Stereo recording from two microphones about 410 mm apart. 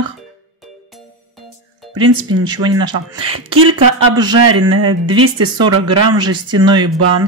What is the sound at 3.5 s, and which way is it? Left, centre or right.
Speech, right.